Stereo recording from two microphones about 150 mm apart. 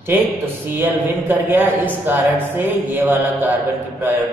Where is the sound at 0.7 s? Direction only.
15° right (ahead or behind).